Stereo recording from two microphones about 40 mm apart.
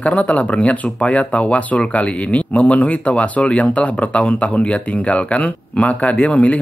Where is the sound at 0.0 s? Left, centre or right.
Left.